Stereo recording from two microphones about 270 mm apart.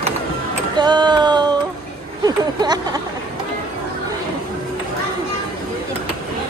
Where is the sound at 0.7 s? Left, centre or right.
Centre.